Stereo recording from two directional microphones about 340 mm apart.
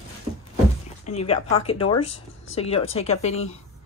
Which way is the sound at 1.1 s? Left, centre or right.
Centre.